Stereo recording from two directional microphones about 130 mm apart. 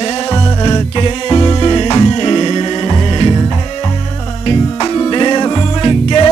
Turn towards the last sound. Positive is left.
turn(degrees=45)  # may be behind; listen again after turning